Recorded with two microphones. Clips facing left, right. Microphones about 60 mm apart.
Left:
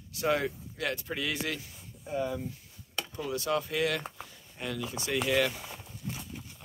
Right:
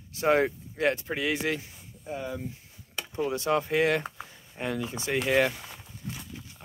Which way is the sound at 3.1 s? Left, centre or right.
Right.